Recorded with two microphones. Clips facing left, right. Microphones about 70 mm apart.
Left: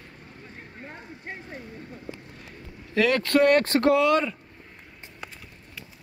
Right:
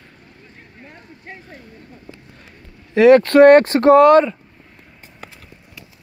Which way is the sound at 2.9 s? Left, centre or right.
Right.